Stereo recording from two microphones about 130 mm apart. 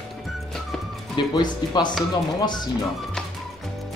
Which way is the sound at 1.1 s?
35° left (ahead or behind).